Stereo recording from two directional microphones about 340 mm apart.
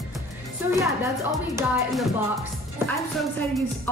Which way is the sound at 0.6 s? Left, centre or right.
Centre.